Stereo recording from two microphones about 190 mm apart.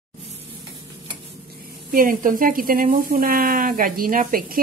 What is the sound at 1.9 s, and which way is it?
Speech, 45° right (ahead or behind).